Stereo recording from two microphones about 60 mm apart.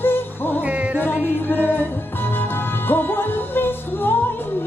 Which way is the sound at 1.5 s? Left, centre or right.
Left.